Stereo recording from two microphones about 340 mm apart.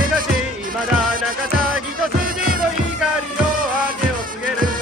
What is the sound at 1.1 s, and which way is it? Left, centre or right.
Music, right.